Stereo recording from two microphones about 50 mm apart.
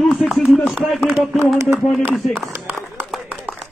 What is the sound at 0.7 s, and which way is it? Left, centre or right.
Speech, centre.